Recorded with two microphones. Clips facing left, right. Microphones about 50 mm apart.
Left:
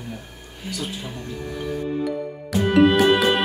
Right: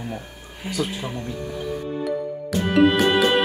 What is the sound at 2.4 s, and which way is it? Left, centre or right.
Music, centre.